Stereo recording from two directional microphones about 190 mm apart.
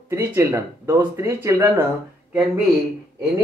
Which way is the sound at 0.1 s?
15° right (ahead or behind).